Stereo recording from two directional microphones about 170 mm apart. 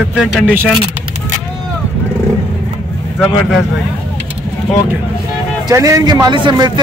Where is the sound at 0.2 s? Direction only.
5° right (ahead or behind).